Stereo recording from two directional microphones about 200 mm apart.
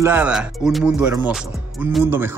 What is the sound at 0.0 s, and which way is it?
Speech, 10° right (ahead or behind).